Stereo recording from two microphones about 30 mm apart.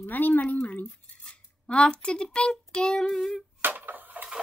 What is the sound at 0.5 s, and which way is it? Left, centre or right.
Speech, left.